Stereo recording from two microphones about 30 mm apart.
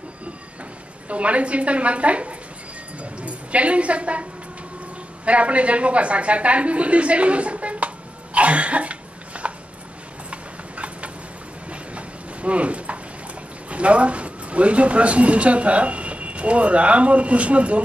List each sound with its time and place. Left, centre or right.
1.0 s a woman's voice: right
3.0 s a sound: right
5.2 s a woman's voice: right
8.4 s cough: right
10.3 s clip-clop: right
13.7 s speech: right